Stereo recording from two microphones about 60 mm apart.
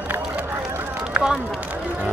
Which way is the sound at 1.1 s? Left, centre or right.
Centre.